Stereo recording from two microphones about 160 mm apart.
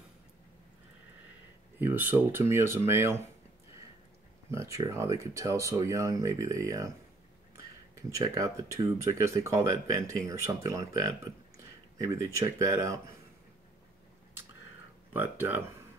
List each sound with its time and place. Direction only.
1.8 s speech: 15° right (ahead or behind)
4.5 s speech: 15° right (ahead or behind)
8.1 s speech: 20° right (ahead or behind)
15.1 s speech: 15° right (ahead or behind)